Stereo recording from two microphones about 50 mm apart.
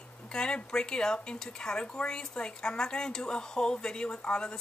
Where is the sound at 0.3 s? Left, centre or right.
Centre.